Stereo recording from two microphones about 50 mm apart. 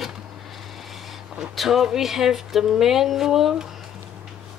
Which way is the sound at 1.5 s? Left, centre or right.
Centre.